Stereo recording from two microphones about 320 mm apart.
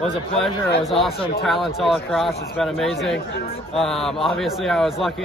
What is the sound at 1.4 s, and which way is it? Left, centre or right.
A man's voice, centre.